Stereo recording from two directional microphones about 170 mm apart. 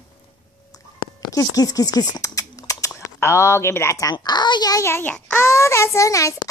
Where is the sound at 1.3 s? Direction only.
20° left (ahead or behind).